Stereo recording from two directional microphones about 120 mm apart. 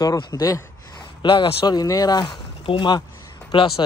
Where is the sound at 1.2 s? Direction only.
40° left (ahead or behind).